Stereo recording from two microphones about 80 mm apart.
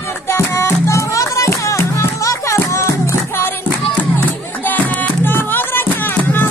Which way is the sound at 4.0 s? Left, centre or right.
Left.